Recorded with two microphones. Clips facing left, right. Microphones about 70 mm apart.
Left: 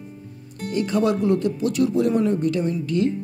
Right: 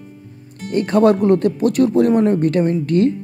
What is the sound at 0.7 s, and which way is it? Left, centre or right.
Speech, right.